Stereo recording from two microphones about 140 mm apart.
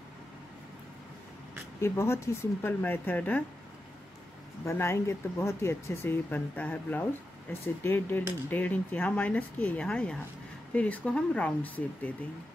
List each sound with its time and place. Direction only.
1.8 s speech: 20° left (ahead or behind)
4.6 s speech: 20° left (ahead or behind)